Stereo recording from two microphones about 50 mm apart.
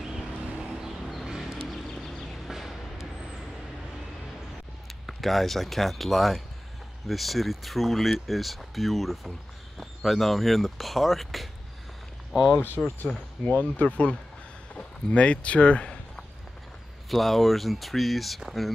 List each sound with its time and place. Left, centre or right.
0.0 s vehicle: centre
1.2 s a sound: centre
5.0 s speech: centre
12.3 s speech: centre
12.5 s speech: left
13.1 s speech: left
17.1 s speech: centre